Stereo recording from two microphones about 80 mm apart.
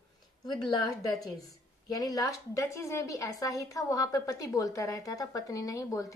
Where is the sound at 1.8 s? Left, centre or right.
Left.